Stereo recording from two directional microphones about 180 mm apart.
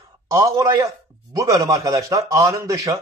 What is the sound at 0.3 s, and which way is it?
Speech, 15° right (ahead or behind).